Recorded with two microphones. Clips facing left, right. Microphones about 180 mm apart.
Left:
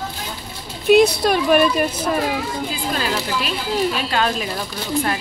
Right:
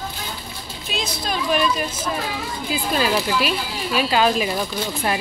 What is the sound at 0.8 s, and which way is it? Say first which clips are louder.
Speech: left 15 dB; 65° left (ahead or behind).